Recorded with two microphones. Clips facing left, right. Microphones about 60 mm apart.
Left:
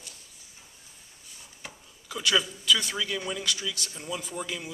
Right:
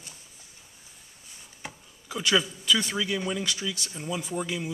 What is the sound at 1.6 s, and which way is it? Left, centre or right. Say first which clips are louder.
Speech: right 4 dB; centre.